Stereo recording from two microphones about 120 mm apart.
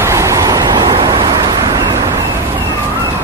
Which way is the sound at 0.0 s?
25° right (ahead or behind).